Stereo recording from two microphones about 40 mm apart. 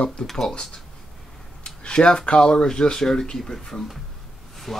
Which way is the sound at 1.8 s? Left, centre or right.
Left.